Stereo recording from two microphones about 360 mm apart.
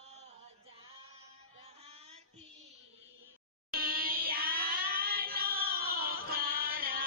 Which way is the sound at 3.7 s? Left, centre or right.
Right.